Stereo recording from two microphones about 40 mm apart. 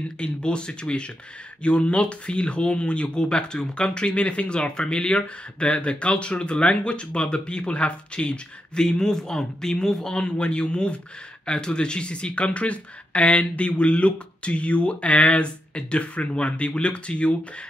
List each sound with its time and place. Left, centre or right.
0.2 s speech: left